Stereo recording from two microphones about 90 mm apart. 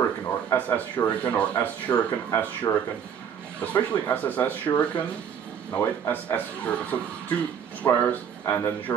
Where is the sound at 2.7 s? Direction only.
25° left (ahead or behind).